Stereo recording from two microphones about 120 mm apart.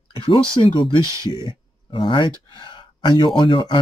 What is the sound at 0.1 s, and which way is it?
Speech, 45° left (ahead or behind).